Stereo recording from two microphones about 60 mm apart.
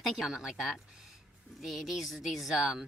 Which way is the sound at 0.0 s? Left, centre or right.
Centre.